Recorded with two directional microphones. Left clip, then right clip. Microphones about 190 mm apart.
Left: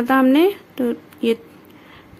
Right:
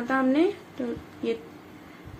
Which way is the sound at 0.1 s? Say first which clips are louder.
Left 8 dB; 60° left (ahead or behind).